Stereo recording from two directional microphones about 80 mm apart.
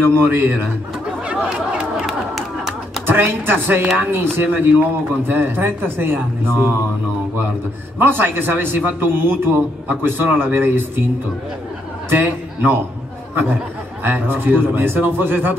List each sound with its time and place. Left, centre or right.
0.1 s a man's voice: right
1.2 s chatter: centre
2.0 s a sound: centre
3.1 s a man's voice: right
8.0 s a man's voice: right
12.1 s a man's voice: right